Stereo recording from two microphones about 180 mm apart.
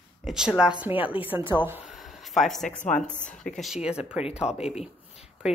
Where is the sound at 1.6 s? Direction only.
10° right (ahead or behind).